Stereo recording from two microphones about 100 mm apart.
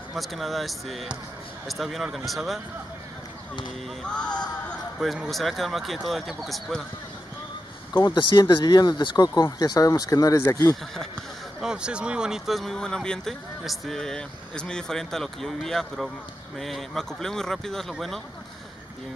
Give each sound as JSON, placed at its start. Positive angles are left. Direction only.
{"t": 0.1, "sound": "speech", "side_deg": 0}
{"t": 4.0, "sound": "music", "side_deg": 10}
{"t": 4.9, "sound": "speech", "side_deg": 0}
{"t": 7.9, "sound": "speech", "side_deg": 50}
{"t": 11.6, "sound": "speech", "side_deg": -10}